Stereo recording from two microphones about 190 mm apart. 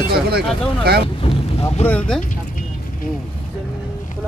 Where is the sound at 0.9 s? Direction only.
55° right (ahead or behind).